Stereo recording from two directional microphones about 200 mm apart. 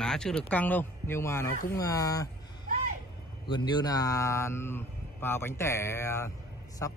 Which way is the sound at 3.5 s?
20° left (ahead or behind).